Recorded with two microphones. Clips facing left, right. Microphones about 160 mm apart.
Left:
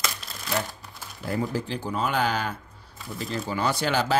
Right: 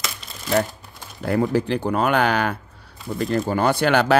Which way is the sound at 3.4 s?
55° right (ahead or behind).